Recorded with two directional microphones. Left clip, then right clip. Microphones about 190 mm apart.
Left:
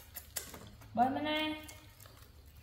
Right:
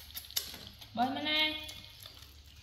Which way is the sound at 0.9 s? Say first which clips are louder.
Even; 35° left (ahead or behind).